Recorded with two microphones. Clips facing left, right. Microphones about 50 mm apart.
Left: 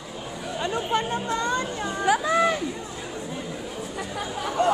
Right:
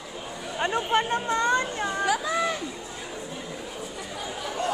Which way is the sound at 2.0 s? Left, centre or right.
Left.